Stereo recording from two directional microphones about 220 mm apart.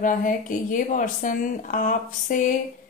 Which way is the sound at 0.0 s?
35° left (ahead or behind).